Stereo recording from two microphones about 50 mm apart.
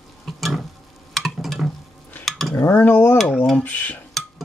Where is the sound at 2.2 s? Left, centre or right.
Centre.